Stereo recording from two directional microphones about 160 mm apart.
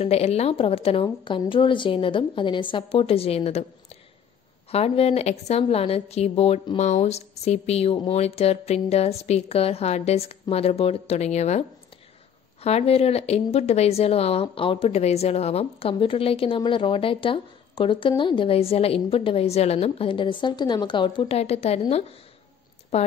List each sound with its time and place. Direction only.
0.0 s a woman's voice: 40° left (ahead or behind)